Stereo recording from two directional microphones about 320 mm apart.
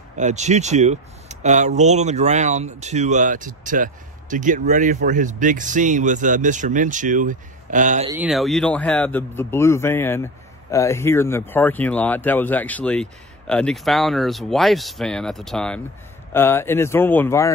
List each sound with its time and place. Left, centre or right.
0.2 s speech: right
8.1 s speech: centre